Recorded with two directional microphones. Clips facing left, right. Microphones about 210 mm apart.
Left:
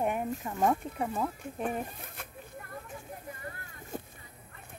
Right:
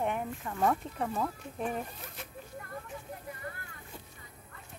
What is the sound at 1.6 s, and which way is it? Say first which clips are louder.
Speech: left 1 dB; 55° left (ahead or behind).